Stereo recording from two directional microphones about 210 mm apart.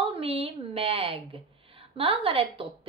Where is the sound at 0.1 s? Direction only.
30° right (ahead or behind).